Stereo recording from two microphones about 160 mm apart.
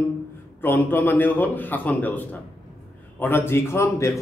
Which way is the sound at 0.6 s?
15° left (ahead or behind).